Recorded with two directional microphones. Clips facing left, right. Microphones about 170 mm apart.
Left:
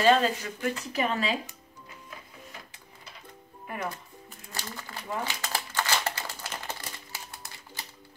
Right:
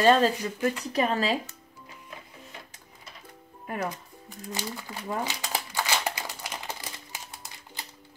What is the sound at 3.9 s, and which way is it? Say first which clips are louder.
Crumpling: right 2 dB; 15° right (ahead or behind).